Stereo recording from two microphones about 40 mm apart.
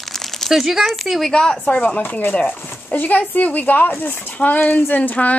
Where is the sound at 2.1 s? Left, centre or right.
Left.